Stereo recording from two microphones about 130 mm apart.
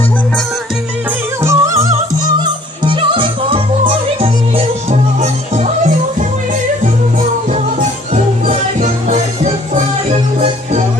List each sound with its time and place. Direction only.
1.4 s music: 25° right (ahead or behind)
2.4 s music: 40° right (ahead or behind); by 9.5 s 65° right (ahead or behind)
10.1 s music: 50° right (ahead or behind)